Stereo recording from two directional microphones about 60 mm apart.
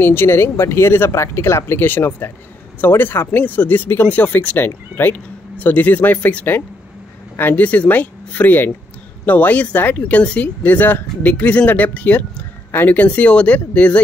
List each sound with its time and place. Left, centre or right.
0.0 s speech: left
1.9 s speech: left